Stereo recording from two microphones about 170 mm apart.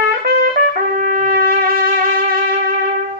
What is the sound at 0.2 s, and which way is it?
Trumpet, 55° right (ahead or behind).